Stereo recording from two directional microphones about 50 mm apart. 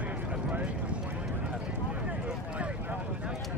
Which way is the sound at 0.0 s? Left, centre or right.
Right.